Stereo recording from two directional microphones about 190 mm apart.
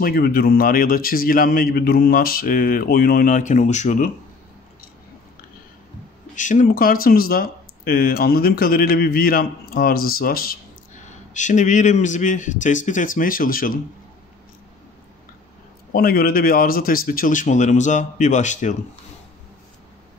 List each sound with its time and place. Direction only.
0.0 s speech: 50° left (ahead or behind)
6.3 s speech: 40° left (ahead or behind)
11.3 s a man's voice: 40° left (ahead or behind)
15.9 s speech: 50° left (ahead or behind)